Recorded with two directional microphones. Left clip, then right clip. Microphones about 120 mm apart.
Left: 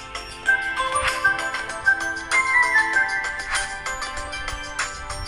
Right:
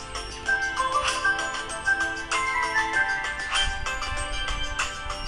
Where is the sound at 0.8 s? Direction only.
20° left (ahead or behind).